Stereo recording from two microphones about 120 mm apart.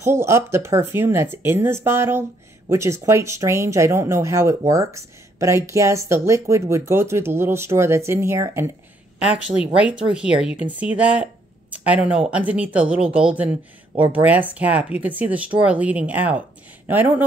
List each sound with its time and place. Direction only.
0.0 s speech: 20° right (ahead or behind)
9.6 s speech: 10° right (ahead or behind)